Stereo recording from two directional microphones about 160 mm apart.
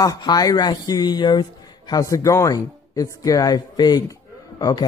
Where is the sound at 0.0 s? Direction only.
25° left (ahead or behind).